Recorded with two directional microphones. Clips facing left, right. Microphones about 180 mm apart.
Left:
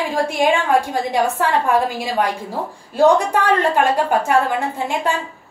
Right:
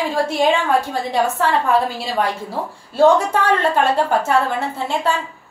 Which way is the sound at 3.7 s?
15° left (ahead or behind).